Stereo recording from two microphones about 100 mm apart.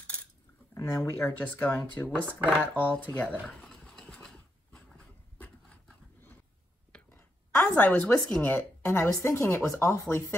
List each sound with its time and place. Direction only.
0.7 s speech: 35° left (ahead or behind)
1.2 s speech: 15° left (ahead or behind)
2.7 s a sound: 15° left (ahead or behind)
4.9 s dog: 10° left (ahead or behind)
6.9 s a sound: 10° left (ahead or behind)
7.5 s a woman's voice: 15° left (ahead or behind)